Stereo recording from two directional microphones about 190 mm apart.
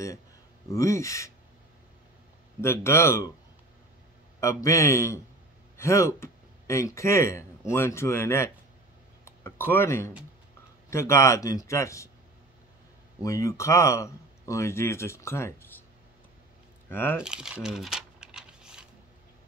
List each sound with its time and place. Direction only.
0.7 s speech: 15° left (ahead or behind)
2.6 s speech: 15° left (ahead or behind)
4.4 s speech: 15° left (ahead or behind)
13.2 s speech: 15° left (ahead or behind)
16.9 s speech: 10° left (ahead or behind)
17.2 s crumpling: 5° right (ahead or behind)